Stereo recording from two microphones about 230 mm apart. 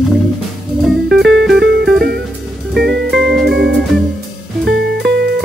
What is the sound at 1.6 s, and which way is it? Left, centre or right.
Music, right.